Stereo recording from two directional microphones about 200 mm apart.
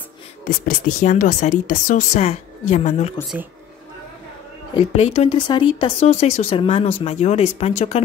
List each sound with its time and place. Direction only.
0.5 s speech: 45° left (ahead or behind)
4.7 s speech: 30° left (ahead or behind)